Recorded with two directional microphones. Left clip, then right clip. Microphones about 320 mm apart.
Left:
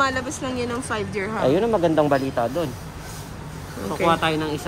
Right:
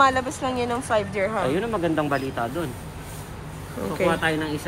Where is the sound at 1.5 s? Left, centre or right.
Left.